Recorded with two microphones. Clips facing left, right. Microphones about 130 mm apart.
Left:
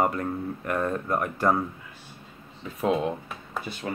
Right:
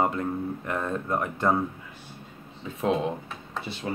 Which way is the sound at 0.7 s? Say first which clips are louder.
Left 3 dB; 50° left (ahead or behind).